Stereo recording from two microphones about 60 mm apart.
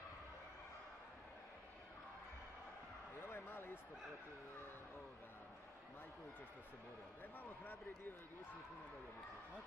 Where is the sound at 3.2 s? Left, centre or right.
Left.